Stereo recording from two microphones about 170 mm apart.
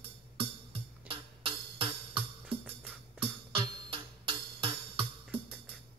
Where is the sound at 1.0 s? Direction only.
30° right (ahead or behind).